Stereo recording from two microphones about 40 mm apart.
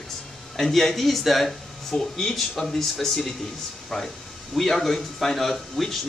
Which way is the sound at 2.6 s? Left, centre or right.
Centre.